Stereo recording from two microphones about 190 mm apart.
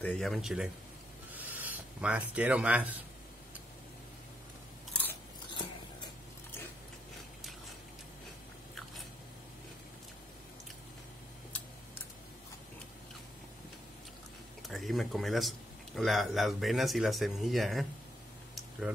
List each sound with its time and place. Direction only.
0.0 s speech: 5° left (ahead or behind)
1.3 s a sound: 10° right (ahead or behind)
14.7 s speech: centre (ahead or behind)